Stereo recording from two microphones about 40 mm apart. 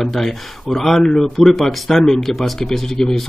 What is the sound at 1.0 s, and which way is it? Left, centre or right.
Speech, centre.